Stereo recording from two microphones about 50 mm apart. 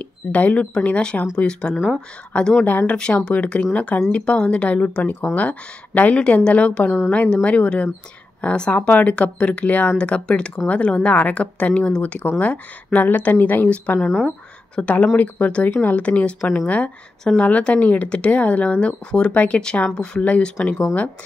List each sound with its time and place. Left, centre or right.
0.0 s speech: left
9.1 s speech: left
16.0 s speech: left